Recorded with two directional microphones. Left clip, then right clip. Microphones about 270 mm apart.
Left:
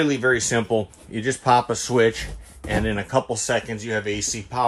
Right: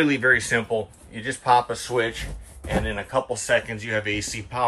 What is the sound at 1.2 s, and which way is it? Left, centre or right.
Speech, left.